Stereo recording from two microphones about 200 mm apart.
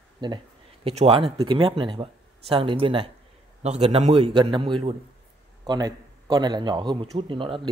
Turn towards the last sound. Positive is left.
turn(degrees=-25)  # may be behind; listen again after turning